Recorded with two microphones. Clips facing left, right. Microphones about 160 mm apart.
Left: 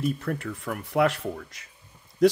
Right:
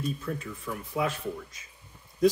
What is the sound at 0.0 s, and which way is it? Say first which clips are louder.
Speech: left 5 dB; 70° left (ahead or behind).